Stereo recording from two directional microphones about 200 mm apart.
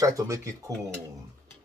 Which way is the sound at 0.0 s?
15° right (ahead or behind).